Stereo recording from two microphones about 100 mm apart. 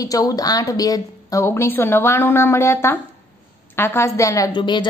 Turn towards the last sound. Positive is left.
turn(degrees=50)  # may be behind; listen again after turning